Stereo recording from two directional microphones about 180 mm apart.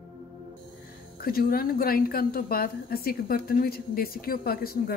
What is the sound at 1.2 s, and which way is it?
A woman's voice, 55° left (ahead or behind).